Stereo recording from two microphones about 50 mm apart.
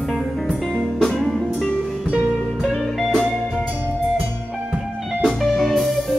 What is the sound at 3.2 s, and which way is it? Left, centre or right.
Music, centre.